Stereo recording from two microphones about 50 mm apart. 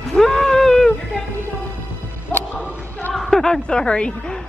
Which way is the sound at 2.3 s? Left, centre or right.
Left.